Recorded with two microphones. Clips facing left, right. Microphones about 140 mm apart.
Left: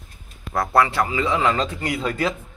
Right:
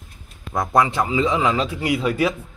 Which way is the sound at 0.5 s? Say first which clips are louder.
Even; 15° right (ahead or behind).